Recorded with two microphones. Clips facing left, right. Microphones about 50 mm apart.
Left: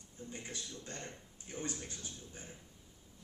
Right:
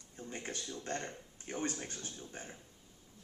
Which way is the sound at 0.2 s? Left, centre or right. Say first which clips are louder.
Right 3 dB; right.